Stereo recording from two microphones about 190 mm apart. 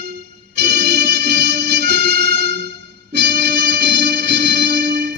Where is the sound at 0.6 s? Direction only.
60° right (ahead or behind).